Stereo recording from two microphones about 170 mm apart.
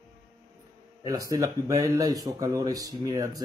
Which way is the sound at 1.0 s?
20° right (ahead or behind).